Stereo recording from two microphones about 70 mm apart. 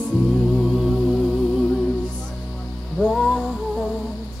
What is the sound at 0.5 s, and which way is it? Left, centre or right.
Music, centre.